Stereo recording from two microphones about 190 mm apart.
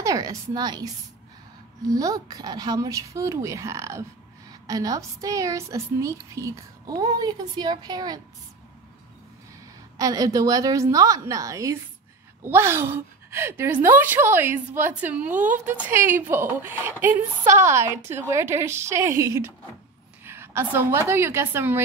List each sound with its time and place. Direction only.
0.0 s a woman's voice: 15° right (ahead or behind)
1.9 s a woman's voice: 20° right (ahead or behind)
9.9 s a woman's voice: 20° right (ahead or behind)